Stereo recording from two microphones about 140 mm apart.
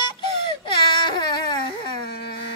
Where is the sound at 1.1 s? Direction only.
30° left (ahead or behind).